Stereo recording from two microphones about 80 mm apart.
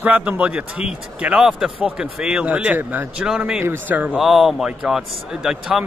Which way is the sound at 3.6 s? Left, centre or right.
Right.